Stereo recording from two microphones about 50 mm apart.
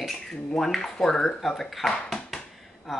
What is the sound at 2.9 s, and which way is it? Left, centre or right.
Speech, centre.